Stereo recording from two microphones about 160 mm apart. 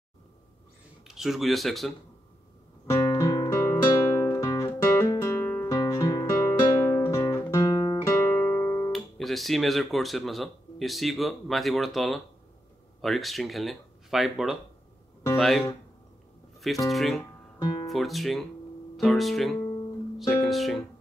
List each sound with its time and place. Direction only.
1.0 s speech: centre (ahead or behind)
2.9 s guitar: 20° left (ahead or behind)
8.2 s guitar: 10° left (ahead or behind)
8.9 s speech: centre (ahead or behind)
16.9 s speech: centre (ahead or behind)